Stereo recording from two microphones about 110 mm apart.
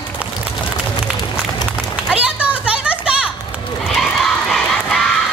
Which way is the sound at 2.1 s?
10° right (ahead or behind).